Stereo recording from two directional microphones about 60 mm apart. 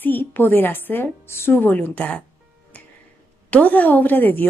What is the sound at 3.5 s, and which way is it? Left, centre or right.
Speech, left.